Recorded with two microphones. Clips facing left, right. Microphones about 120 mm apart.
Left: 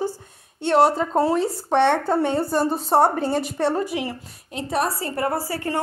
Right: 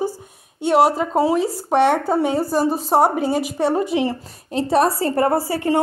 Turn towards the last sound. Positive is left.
turn(degrees=-20)  # may be behind; listen again after turning